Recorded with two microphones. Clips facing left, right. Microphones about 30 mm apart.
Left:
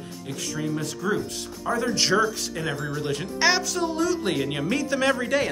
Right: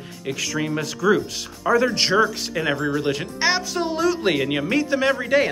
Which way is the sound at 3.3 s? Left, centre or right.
Centre.